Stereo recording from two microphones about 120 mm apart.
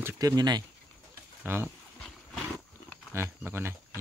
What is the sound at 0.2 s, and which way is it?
Speech, 35° right (ahead or behind).